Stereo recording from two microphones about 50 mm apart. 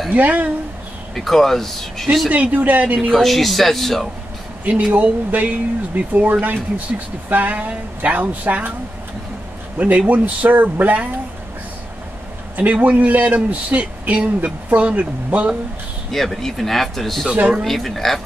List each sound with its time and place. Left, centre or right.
0.1 s a man's voice: right
1.1 s speech: centre
2.2 s speech: right
3.1 s speech: centre
4.9 s a man's voice: right
9.8 s a man's voice: right
12.7 s a man's voice: right
16.1 s speech: centre
17.3 s speech: right
17.6 s speech: centre